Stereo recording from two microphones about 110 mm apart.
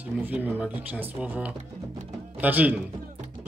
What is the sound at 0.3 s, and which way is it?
Speech, 15° right (ahead or behind).